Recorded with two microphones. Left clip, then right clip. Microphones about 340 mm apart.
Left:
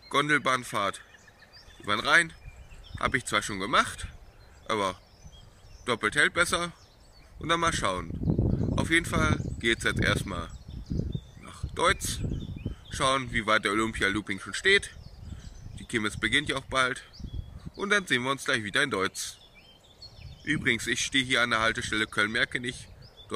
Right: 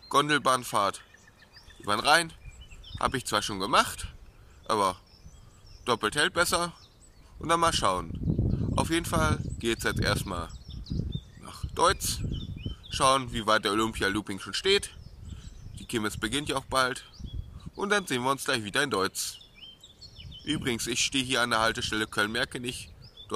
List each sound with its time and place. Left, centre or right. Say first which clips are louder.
0.1 s speech: right 1 dB; centre
8.3 s a sound: left 6 dB; left
8.7 s speech: left 1 dB; centre
11.4 s a sound: right 1 dB; centre
12.9 s speech: right 2 dB; centre
20.4 s speech: left 4 dB; centre